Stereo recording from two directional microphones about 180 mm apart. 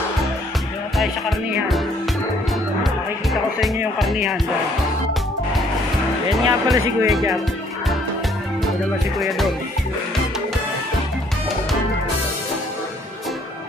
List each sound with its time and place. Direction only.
3.6 s speech: centre (ahead or behind)
6.4 s speech: 20° right (ahead or behind)